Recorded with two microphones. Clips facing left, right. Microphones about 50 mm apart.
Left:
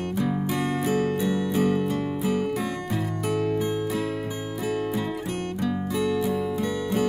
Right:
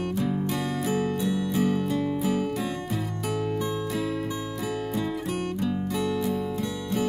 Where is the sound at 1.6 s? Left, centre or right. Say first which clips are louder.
Left 1 dB; centre.